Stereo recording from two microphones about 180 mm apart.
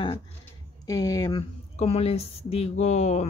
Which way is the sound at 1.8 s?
35° left (ahead or behind).